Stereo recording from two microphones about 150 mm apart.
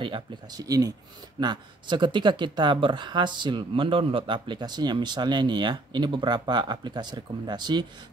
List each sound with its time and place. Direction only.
0.0 s speech: 30° right (ahead or behind)